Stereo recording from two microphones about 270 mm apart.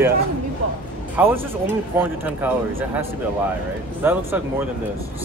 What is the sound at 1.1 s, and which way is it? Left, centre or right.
Speech, centre.